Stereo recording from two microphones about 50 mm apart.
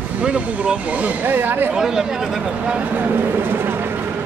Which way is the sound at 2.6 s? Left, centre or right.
Right.